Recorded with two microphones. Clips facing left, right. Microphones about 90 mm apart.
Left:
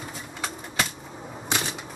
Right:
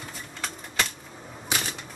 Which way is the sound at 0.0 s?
5° left (ahead or behind).